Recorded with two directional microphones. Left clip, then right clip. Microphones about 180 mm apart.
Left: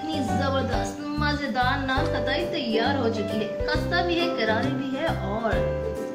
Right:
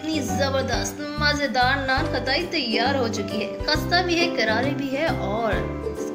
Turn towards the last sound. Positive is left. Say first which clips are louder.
# right 3 dB
turn(degrees=-25)  # may be behind; listen again after turning